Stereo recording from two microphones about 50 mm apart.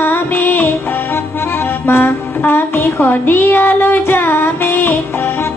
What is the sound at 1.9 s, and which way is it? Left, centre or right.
Music, left.